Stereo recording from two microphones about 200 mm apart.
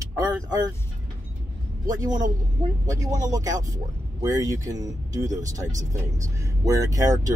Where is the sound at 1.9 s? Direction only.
20° right (ahead or behind).